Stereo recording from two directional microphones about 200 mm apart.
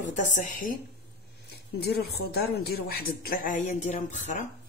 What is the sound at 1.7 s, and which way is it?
A woman's voice, 55° left (ahead or behind).